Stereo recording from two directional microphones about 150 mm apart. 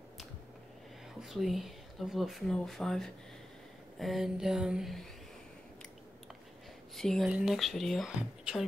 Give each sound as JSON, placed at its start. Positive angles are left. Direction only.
{"t": 1.2, "sound": "speech", "side_deg": 0}
{"t": 7.0, "sound": "speech", "side_deg": 0}